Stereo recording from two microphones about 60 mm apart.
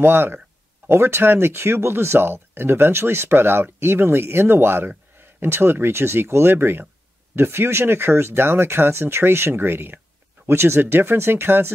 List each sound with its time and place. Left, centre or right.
0.0 s speech: right